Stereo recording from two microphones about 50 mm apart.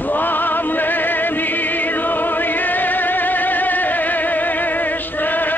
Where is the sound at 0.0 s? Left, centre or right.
Left.